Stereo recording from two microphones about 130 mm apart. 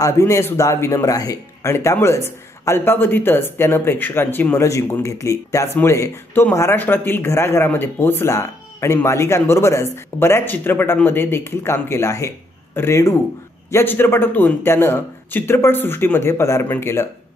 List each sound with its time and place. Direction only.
0.0 s a man's voice: 20° left (ahead or behind)